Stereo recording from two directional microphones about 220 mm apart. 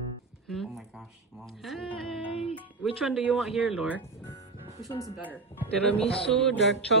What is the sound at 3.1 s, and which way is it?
Speech, 5° right (ahead or behind).